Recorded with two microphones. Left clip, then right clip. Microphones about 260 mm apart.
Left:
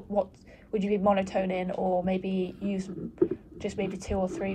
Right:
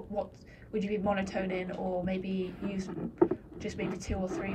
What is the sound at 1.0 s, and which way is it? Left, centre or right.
A woman's voice, centre.